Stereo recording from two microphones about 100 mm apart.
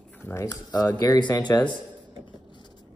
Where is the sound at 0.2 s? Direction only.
25° left (ahead or behind).